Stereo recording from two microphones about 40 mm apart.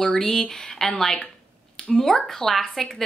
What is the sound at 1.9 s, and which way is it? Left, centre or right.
A woman's voice, centre.